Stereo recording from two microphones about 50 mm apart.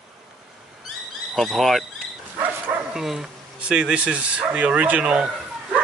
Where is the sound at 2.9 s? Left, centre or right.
Centre.